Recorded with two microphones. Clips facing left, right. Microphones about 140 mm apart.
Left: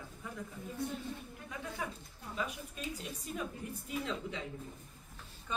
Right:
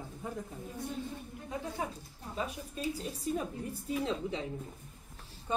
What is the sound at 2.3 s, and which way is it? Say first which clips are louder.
Speech: right 3 dB; 35° right (ahead or behind).